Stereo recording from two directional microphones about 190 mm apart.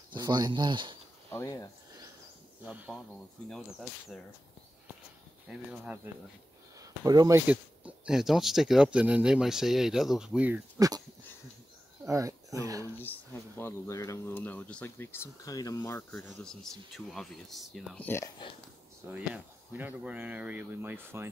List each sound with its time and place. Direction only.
0.1 s speech: 20° right (ahead or behind)
1.3 s speech: 15° left (ahead or behind)
2.6 s speech: 10° right (ahead or behind)
5.5 s speech: 5° right (ahead or behind)
6.8 s speech: 20° right (ahead or behind)
12.1 s speech: 15° right (ahead or behind)
12.9 s speech: 10° left (ahead or behind)
16.2 s speech: centre (ahead or behind)
19.1 s speech: 10° right (ahead or behind)